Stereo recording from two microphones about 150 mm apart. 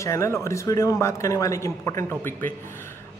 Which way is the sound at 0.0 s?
20° left (ahead or behind).